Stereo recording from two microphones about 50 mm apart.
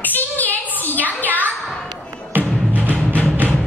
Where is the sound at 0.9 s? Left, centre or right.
Right.